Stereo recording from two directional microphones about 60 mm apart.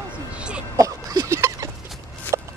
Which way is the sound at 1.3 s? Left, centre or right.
Right.